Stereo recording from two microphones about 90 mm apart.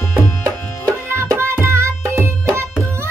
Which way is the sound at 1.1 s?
30° right (ahead or behind).